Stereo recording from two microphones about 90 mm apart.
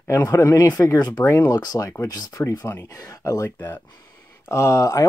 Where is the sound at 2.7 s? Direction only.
25° left (ahead or behind).